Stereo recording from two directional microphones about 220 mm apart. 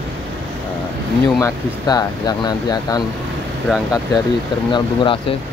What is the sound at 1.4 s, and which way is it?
Speech, 15° left (ahead or behind).